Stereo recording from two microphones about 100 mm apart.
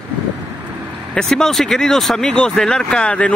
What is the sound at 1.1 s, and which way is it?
Speech, 5° left (ahead or behind).